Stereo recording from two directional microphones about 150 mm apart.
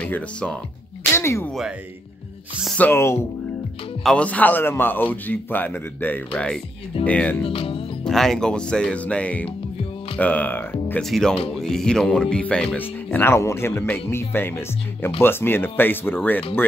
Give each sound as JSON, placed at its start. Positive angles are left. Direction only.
{"t": 0.0, "sound": "speech", "side_deg": 10}
{"t": 2.6, "sound": "speech", "side_deg": 5}
{"t": 2.9, "sound": "speech", "side_deg": 15}
{"t": 7.4, "sound": "music", "side_deg": 40}
{"t": 8.0, "sound": "speech", "side_deg": 0}
{"t": 11.1, "sound": "speech", "side_deg": 0}